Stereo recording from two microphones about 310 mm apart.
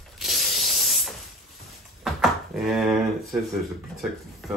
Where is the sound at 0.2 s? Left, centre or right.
Centre.